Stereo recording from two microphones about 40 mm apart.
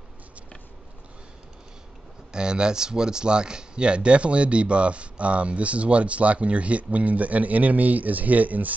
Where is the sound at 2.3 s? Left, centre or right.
Right.